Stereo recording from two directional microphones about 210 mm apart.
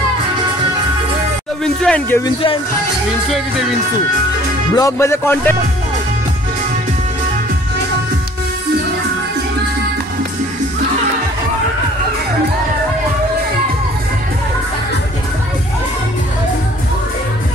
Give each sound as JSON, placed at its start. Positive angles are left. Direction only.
{"t": 1.6, "sound": "speech", "side_deg": 5}
{"t": 2.2, "sound": "speech", "side_deg": 25}
{"t": 3.3, "sound": "speech", "side_deg": 0}
{"t": 4.7, "sound": "music", "side_deg": 15}